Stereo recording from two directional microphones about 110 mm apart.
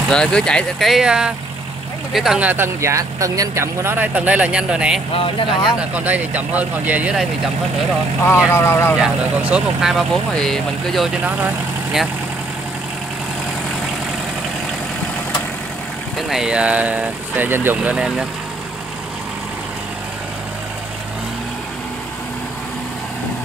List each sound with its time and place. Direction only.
0.1 s speech: 5° left (ahead or behind)
2.5 s speech: 25° right (ahead or behind)
5.1 s speech: 50° left (ahead or behind)
5.8 s speech: 15° right (ahead or behind)
8.2 s speech: 20° left (ahead or behind)
9.0 s speech: 5° right (ahead or behind)
16.2 s speech: 5° right (ahead or behind)
17.9 s speech: 5° right (ahead or behind)